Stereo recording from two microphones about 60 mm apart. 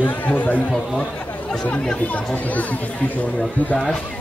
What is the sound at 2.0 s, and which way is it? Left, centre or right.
Speech, left.